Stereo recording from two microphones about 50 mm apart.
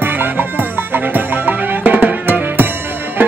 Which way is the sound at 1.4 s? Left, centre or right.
Right.